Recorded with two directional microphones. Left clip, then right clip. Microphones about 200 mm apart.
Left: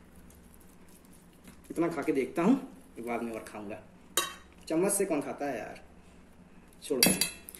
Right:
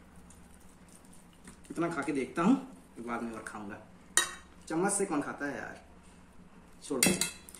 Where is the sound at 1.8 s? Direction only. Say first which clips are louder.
Left 3 dB; 15° right (ahead or behind).